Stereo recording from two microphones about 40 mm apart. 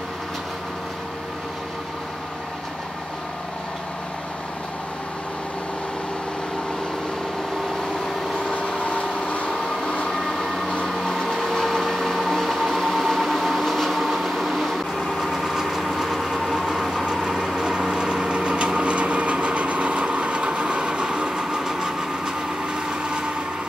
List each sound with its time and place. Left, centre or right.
8.5 s vehicle: left
9.5 s train: centre
10.9 s a sound: centre
15.1 s vehicle: centre
16.6 s train: centre
17.0 s a sound: centre
22.8 s vehicle: right